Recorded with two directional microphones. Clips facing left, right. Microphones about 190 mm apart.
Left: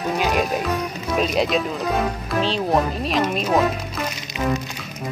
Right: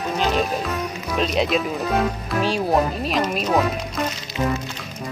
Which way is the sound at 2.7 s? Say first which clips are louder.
Even; centre (ahead or behind).